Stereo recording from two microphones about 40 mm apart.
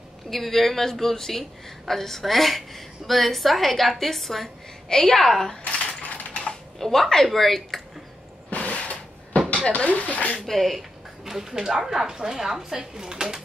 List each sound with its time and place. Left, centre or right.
0.3 s a woman's voice: centre
5.7 s typing: left
6.8 s a woman's voice: centre
8.5 s a sound: left
9.7 s speech: left
10.4 s a sound: centre
11.6 s speech: centre